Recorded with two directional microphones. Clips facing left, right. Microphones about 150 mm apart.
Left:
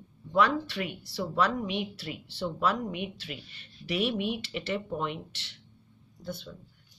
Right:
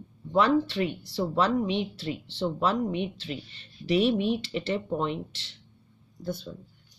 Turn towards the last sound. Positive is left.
turn(degrees=-40)  # may be behind; listen again after turning